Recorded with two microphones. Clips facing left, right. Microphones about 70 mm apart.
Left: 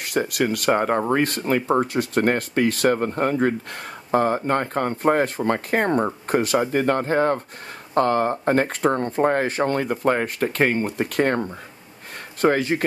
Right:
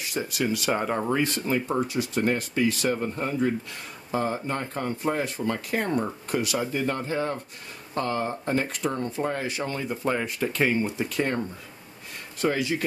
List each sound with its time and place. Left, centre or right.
0.0 s speech: left
6.7 s speech: left